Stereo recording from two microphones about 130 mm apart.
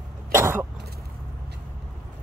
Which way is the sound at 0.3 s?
20° right (ahead or behind).